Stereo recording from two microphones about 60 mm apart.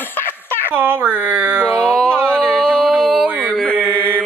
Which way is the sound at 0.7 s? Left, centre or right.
Right.